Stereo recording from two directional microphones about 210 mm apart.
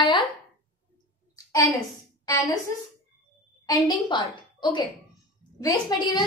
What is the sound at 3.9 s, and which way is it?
A woman's voice, 20° left (ahead or behind).